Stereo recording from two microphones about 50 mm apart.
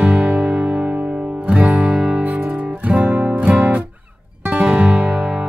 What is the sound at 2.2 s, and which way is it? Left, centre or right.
Music, right.